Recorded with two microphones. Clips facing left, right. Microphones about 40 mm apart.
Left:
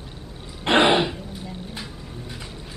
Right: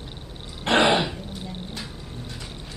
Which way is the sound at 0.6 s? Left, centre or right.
Centre.